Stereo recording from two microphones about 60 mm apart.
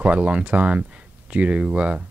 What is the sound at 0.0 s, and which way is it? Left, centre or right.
Speech, right.